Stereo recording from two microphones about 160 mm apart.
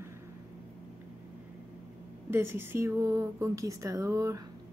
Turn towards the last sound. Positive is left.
turn(degrees=-20)  # may be behind; listen again after turning